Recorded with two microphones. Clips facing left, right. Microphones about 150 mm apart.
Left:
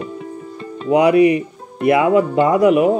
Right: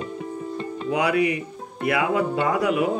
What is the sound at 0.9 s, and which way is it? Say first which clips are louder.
Speech: left 10 dB; 25° left (ahead or behind).